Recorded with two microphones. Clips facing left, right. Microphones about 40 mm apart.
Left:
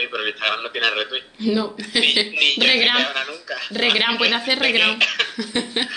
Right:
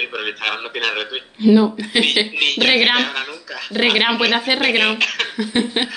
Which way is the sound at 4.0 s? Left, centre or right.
Centre.